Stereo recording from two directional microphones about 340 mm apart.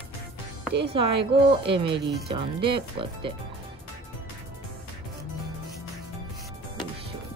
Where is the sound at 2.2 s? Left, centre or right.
Centre.